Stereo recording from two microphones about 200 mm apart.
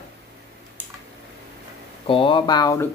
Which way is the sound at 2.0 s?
25° left (ahead or behind).